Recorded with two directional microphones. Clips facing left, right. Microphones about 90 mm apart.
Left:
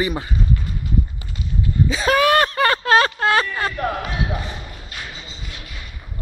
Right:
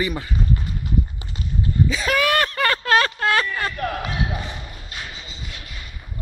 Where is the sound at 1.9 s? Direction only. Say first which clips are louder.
Left 7 dB; 35° left (ahead or behind).